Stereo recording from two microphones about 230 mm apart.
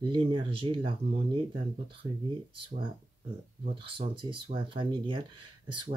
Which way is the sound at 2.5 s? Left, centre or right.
Right.